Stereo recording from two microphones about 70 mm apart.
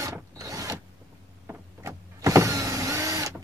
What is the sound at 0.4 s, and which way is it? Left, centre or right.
Power windows, right.